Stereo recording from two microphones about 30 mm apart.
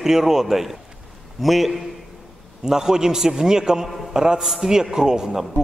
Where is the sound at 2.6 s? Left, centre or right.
Centre.